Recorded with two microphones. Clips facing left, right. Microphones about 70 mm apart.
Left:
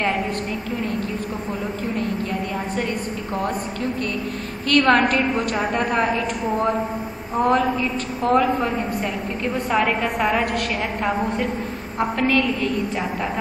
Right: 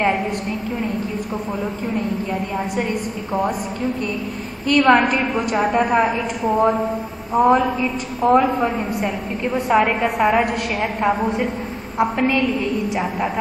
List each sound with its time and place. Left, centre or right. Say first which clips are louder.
4.6 s a woman's voice: right 2 dB; centre
7.3 s a woman's voice: right 4 dB; centre
8.5 s a woman's voice: right 2 dB; right
9.8 s a woman's voice: right 3 dB; centre
12.0 s a woman's voice: right 2 dB; centre